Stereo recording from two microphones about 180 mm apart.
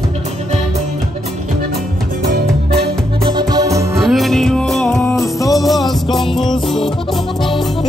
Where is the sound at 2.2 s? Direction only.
60° right (ahead or behind).